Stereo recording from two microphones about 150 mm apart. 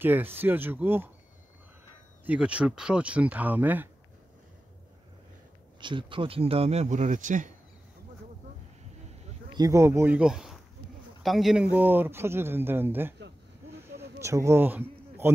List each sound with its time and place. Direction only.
0.0 s speech: 15° right (ahead or behind)
2.2 s speech: 10° right (ahead or behind)
5.8 s speech: 35° right (ahead or behind); by 7.5 s 60° right (ahead or behind)
9.5 s speech: 20° right (ahead or behind); by 11.6 s centre (ahead or behind)
11.7 s speech: 10° right (ahead or behind)
13.9 s a sound: 20° right (ahead or behind)